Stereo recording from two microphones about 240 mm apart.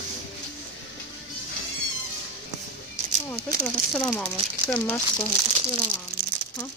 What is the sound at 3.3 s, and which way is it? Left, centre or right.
Speech, centre.